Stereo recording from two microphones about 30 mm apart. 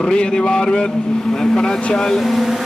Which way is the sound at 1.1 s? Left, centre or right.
Centre.